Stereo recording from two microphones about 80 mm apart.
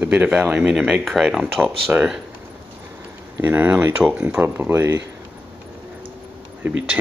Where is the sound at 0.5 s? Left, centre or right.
Centre.